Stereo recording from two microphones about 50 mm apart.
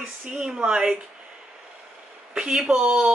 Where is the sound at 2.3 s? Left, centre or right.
Centre.